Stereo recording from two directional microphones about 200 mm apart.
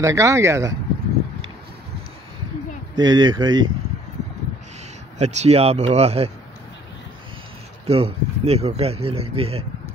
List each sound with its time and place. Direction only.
0.0 s speech: 15° right (ahead or behind)
3.0 s speech: 20° right (ahead or behind)
5.2 s speech: 35° right (ahead or behind)
7.8 s speech: 30° right (ahead or behind)